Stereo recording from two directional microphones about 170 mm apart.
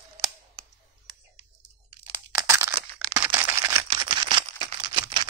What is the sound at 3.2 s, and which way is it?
Camera, 10° right (ahead or behind).